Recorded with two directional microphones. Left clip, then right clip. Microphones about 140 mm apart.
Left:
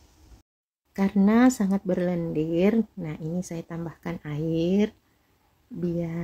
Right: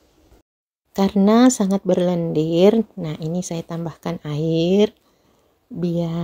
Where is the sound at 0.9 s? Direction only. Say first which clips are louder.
Right 7 dB; 20° right (ahead or behind).